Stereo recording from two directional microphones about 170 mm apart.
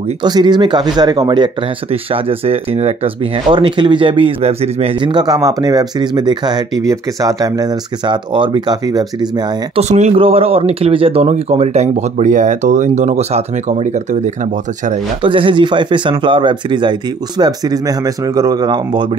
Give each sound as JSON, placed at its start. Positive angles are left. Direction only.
{"t": 0.2, "sound": "speech", "side_deg": -25}
{"t": 9.8, "sound": "speech", "side_deg": -40}
{"t": 15.2, "sound": "speech", "side_deg": -30}